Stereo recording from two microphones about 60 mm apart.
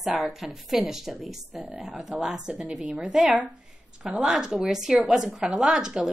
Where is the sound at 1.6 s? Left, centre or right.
Right.